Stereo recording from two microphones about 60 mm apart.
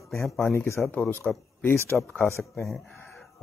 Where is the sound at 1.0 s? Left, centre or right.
Left.